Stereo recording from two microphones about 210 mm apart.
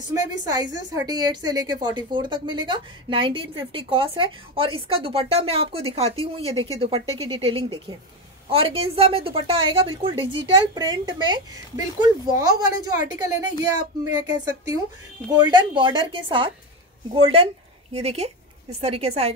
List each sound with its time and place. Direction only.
0.1 s a woman's voice: 20° right (ahead or behind)
14.1 s a woman's voice: 15° right (ahead or behind)